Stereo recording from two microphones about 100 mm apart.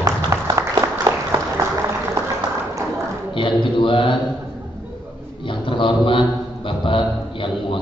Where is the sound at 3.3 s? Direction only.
55° left (ahead or behind).